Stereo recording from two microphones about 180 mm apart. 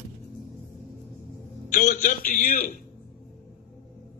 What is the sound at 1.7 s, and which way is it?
A man's voice, 50° left (ahead or behind).